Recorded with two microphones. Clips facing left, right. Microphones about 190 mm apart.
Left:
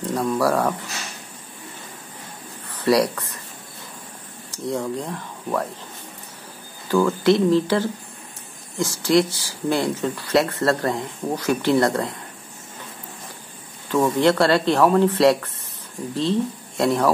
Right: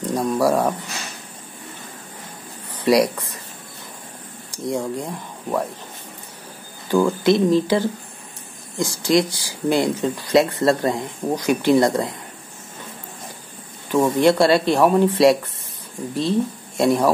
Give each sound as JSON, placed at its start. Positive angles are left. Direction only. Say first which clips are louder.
{"t": 0.1, "sound": "speech", "louder": "right 2 dB", "side_deg": -15}
{"t": 2.8, "sound": "speech", "louder": "right 2 dB", "side_deg": -15}
{"t": 4.5, "sound": "speech", "louder": "right 1 dB", "side_deg": -15}
{"t": 6.9, "sound": "speech", "louder": "right 1 dB", "side_deg": -15}
{"t": 13.8, "sound": "speech", "louder": "right 2 dB", "side_deg": -15}